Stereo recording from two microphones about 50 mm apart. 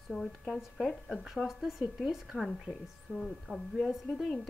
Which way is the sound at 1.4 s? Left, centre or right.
Centre.